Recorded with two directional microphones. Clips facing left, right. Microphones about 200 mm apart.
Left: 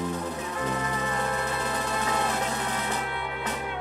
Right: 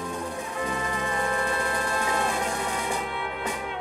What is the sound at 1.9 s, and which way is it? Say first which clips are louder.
Music: right 1 dB; centre (ahead or behind).